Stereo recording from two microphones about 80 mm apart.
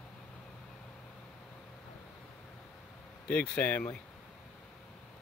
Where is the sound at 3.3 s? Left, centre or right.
Centre.